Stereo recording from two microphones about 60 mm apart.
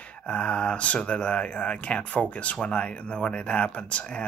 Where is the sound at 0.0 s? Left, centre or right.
Centre.